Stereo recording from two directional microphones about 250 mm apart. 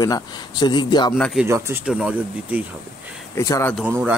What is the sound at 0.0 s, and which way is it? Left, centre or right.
Speech, centre.